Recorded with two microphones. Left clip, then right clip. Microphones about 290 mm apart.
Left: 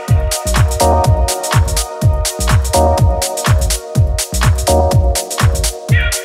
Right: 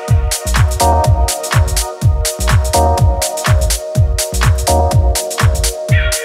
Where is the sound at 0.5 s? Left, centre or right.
Right.